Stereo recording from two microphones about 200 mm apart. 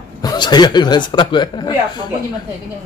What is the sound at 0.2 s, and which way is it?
A man's voice, 20° left (ahead or behind).